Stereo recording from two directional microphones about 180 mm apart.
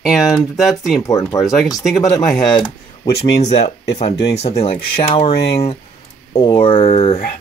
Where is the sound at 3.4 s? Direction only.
40° left (ahead or behind).